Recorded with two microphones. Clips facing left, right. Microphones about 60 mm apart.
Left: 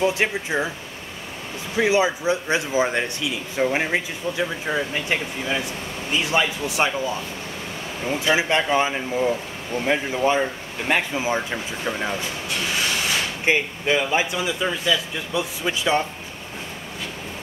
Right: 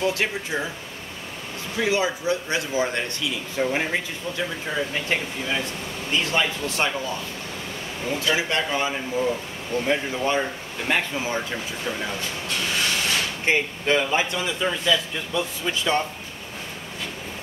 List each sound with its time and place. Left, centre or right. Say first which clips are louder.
0.0 s speech: left 3 dB; left
1.8 s speech: left 4 dB; left
8.0 s speech: left 3 dB; left
9.8 s speech: left 4 dB; centre
13.5 s speech: left 1 dB; centre